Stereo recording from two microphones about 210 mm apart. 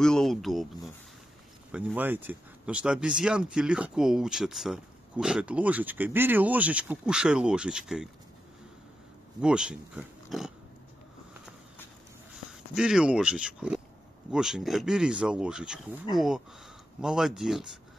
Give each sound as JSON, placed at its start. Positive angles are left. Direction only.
{"t": 0.0, "sound": "speech", "side_deg": 0}
{"t": 1.7, "sound": "speech", "side_deg": -5}
{"t": 9.4, "sound": "speech", "side_deg": -5}
{"t": 12.7, "sound": "speech", "side_deg": -5}